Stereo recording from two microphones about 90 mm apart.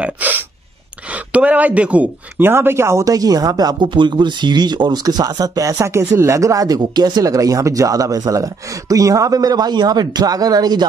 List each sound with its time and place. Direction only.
0.0 s gasp: 20° right (ahead or behind)
1.3 s speech: 15° right (ahead or behind); by 10.9 s 50° right (ahead or behind)